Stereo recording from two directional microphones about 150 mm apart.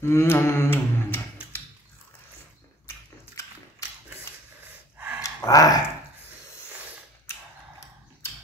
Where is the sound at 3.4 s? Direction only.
20° left (ahead or behind).